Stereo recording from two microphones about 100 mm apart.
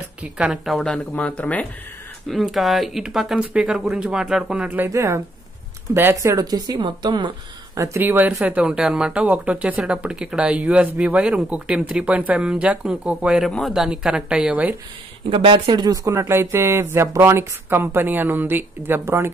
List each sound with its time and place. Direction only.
0.2 s a woman's voice: 10° right (ahead or behind); by 1.7 s 15° left (ahead or behind)
2.2 s speech: centre (ahead or behind)
4.8 s speech: 30° right (ahead or behind)
6.2 s a woman's voice: 40° right (ahead or behind)
7.7 s speech: 30° right (ahead or behind)
8.0 s speech: 20° right (ahead or behind)
13.5 s a man's voice: 5° left (ahead or behind)
13.7 s speech: 10° right (ahead or behind)
15.2 s a woman's voice: 55° right (ahead or behind); by 16.1 s 40° right (ahead or behind)
16.1 s speech: 25° right (ahead or behind)